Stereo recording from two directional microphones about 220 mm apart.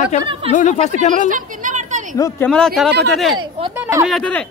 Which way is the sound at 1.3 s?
35° right (ahead or behind).